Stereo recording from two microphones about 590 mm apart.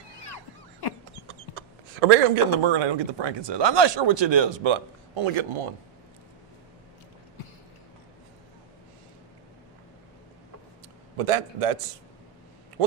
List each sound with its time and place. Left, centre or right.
0.2 s a sound: left
1.2 s speech: right
11.1 s a man's voice: right